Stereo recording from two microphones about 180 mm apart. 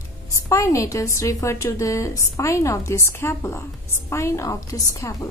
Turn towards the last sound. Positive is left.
turn(degrees=20)  # may be behind; listen again after turning